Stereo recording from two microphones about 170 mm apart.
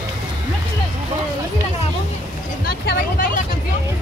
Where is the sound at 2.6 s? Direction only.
60° left (ahead or behind).